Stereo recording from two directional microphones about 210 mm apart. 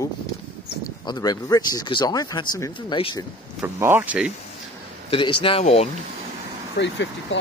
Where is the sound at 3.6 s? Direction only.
10° right (ahead or behind).